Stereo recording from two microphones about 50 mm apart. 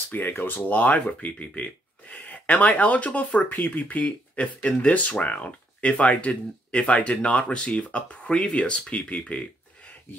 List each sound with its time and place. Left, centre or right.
0.1 s speech: left